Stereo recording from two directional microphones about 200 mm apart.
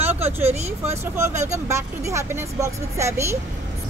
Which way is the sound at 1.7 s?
15° right (ahead or behind).